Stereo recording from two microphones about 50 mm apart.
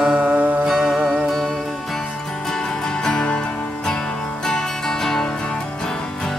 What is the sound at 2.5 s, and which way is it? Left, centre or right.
Music, centre.